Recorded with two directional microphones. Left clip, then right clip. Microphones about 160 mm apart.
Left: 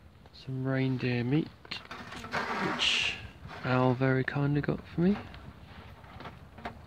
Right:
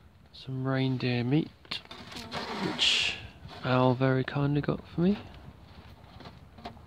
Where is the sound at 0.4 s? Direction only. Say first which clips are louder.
Right 1 dB; 15° right (ahead or behind).